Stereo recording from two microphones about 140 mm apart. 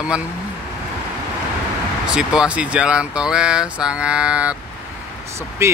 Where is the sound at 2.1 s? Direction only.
5° right (ahead or behind).